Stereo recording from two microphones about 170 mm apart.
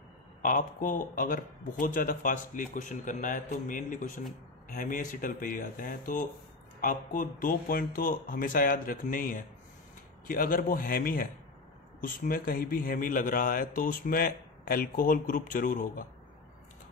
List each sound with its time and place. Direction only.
0.4 s a man's voice: 55° left (ahead or behind)